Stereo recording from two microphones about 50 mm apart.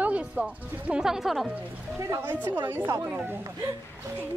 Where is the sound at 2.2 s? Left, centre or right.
Right.